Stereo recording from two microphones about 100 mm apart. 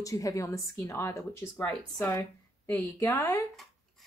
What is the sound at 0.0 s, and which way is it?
Speech, 35° left (ahead or behind).